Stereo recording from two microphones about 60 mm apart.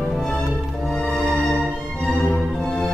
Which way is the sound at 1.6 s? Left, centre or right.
Centre.